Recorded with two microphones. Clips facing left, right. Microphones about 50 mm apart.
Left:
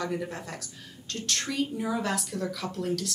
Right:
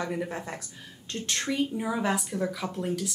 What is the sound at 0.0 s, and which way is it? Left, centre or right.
A woman's voice, right.